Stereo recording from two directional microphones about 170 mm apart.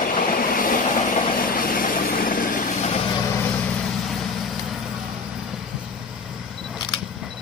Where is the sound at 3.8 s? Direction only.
Centre (ahead or behind).